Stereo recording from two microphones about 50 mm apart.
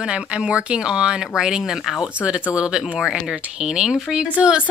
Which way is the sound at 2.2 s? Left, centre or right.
Right.